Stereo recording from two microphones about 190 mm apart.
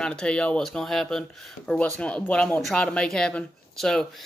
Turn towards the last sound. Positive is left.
turn(degrees=0)  # may be behind; listen again after turning